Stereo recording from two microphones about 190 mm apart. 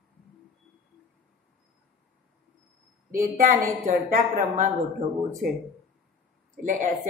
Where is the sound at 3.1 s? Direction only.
45° right (ahead or behind).